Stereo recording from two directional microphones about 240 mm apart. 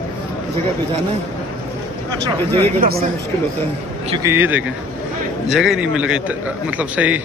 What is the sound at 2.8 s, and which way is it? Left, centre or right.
Speech, right.